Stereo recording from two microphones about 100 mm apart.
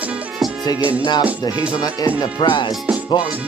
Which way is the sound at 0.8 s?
15° right (ahead or behind).